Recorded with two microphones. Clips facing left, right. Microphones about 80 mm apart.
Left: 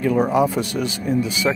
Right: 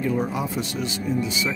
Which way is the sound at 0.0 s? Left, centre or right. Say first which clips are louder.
Left 7 dB; left.